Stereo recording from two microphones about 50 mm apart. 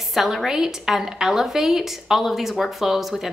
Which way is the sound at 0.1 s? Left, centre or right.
Centre.